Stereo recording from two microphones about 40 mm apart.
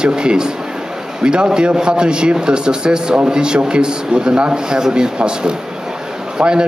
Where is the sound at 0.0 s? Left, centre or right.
Right.